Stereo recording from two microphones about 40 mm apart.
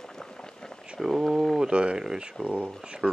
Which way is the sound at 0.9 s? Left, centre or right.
Centre.